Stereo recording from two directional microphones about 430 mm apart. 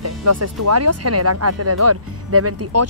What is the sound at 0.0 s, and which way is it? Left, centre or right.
Speech, right.